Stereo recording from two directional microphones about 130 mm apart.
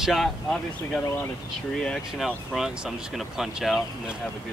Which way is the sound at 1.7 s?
5° left (ahead or behind).